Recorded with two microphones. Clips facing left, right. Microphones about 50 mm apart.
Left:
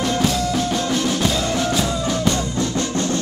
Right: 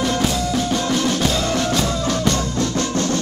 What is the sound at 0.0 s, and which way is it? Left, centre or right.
Music, centre.